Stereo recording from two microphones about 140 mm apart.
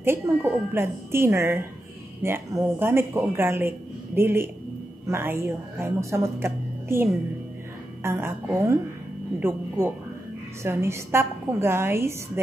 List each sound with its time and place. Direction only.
0.0 s a woman's voice: 15° right (ahead or behind)